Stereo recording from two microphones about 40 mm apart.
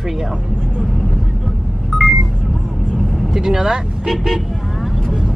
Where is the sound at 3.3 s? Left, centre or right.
Centre.